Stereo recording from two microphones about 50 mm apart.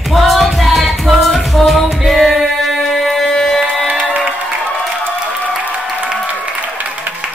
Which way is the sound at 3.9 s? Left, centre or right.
Right.